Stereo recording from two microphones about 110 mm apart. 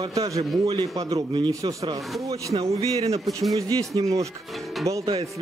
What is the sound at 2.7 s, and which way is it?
Speech, 65° right (ahead or behind).